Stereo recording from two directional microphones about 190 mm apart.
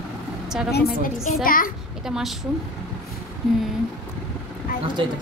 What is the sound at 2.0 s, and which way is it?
Speech, 5° right (ahead or behind).